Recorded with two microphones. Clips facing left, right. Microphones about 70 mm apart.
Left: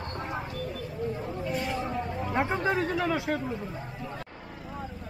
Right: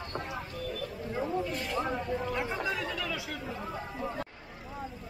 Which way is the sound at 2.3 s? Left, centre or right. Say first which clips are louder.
Left 6 dB; left.